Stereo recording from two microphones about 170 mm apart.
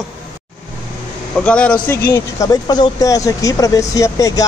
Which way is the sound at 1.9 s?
15° left (ahead or behind).